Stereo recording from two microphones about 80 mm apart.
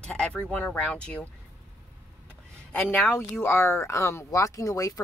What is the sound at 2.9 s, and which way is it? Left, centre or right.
A woman's voice, left.